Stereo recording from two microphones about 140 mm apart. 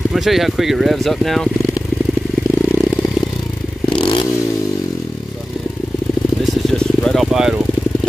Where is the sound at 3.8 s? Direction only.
35° left (ahead or behind).